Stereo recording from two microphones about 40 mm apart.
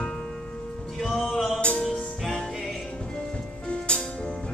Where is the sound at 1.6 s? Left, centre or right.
Left.